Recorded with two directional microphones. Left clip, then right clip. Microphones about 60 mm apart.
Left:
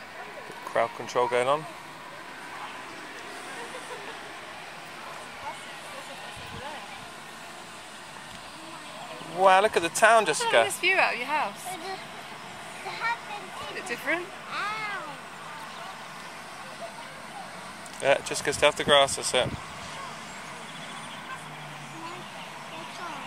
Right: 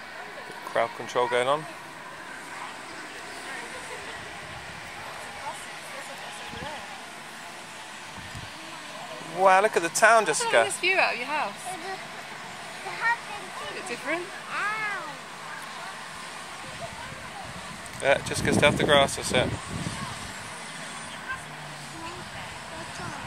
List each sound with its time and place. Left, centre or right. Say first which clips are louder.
0.7 s speech: even; centre
9.4 s speech: even; centre
10.8 s speech: even; left
13.0 s waterfall: right 4 dB; left
13.7 s a sound: left 2 dB; left
18.0 s speech: right 1 dB; centre